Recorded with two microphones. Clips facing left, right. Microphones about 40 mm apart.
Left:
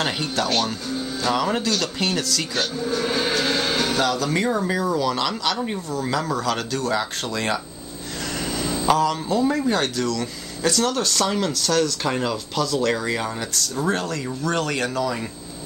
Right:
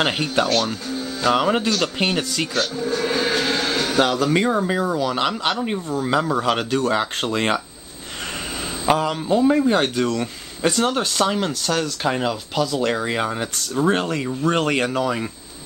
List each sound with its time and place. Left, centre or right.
0.0 s speech: right
0.5 s speech: centre
1.3 s speech: right
2.5 s speech: centre
4.0 s speech: right
8.8 s speech: right
13.1 s speech: right